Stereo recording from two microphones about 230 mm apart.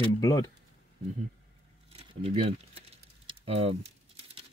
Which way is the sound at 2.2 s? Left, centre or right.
Right.